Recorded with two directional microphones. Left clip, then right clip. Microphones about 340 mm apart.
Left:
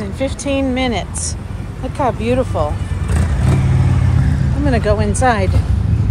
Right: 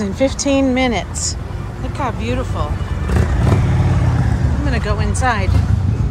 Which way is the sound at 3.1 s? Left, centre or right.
Right.